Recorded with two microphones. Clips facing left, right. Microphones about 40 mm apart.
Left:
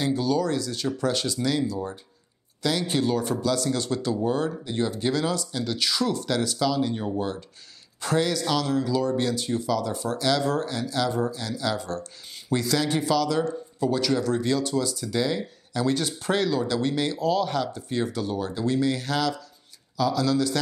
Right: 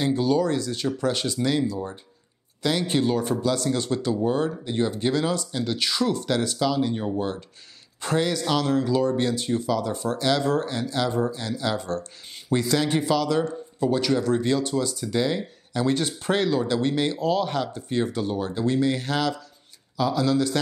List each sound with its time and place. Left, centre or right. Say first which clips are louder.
0.1 s speech: right 2 dB; right